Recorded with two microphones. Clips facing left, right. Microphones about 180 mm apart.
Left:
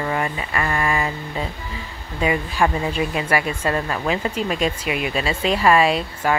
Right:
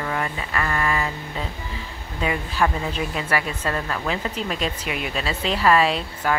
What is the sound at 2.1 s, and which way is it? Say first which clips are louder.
Speech: left 3 dB; 10° left (ahead or behind).